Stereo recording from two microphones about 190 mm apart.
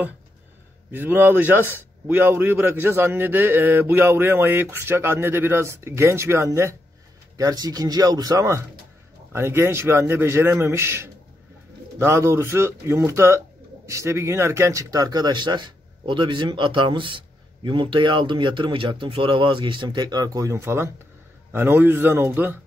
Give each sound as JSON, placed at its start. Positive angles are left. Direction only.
{"t": 0.9, "sound": "a man's voice", "side_deg": -10}